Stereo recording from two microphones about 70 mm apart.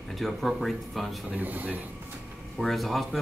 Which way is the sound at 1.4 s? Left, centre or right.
Right.